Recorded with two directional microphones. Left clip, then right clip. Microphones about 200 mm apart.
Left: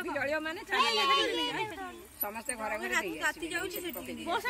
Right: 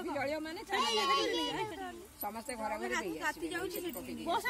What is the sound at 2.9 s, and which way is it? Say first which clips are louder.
Speech: left 4 dB; 15° left (ahead or behind).